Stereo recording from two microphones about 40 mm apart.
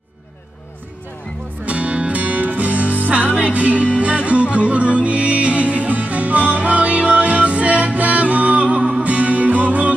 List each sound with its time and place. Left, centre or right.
1.7 s music: right